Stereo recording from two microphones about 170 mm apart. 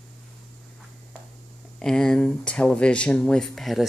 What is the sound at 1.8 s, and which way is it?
Speech, 5° left (ahead or behind).